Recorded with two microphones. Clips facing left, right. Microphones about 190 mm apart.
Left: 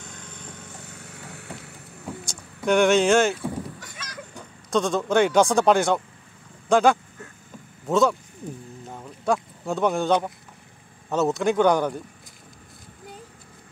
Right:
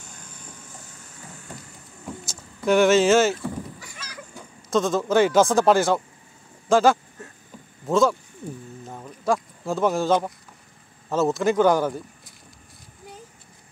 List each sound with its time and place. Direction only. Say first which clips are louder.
0.0 s vehicle: left 4 dB; 65° left (ahead or behind)
2.0 s vehicle: even; centre (ahead or behind)
4.6 s speech: right 1 dB; centre (ahead or behind)
8.8 s a sound: even; centre (ahead or behind)
11.1 s speech: right 1 dB; centre (ahead or behind)